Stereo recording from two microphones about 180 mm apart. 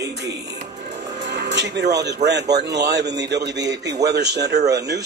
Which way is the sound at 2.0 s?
70° right (ahead or behind).